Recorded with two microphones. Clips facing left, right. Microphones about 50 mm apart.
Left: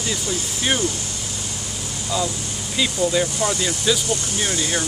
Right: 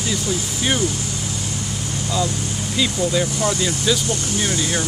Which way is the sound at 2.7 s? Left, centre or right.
Centre.